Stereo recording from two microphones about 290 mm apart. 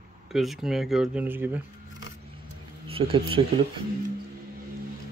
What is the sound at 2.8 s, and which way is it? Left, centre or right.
Speech, centre.